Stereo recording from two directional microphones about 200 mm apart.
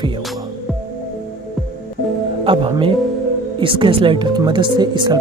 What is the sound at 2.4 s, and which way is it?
Speech, 25° right (ahead or behind).